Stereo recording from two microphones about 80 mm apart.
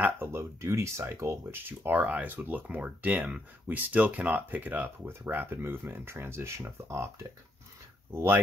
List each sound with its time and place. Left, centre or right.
0.0 s speech: right
1.7 s speech: right
8.1 s speech: right